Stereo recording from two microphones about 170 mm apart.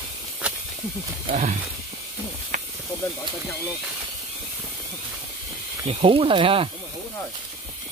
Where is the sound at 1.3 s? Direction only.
45° right (ahead or behind).